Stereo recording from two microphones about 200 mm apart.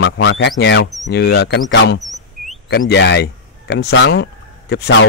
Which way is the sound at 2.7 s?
55° left (ahead or behind).